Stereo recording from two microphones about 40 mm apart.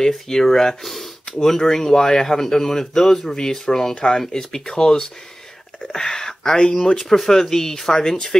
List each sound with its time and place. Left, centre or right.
0.0 s speech: centre